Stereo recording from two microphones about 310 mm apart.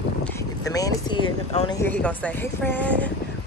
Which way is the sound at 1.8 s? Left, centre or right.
Centre.